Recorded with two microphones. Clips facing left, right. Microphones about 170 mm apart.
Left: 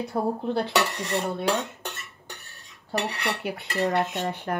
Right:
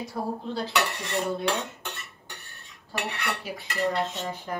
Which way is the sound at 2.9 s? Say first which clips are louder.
Left 5 dB; 40° left (ahead or behind).